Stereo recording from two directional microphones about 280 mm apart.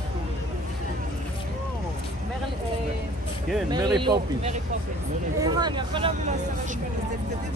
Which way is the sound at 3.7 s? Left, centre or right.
Centre.